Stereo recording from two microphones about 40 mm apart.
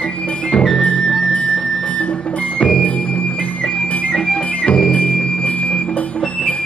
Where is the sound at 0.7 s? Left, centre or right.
Left.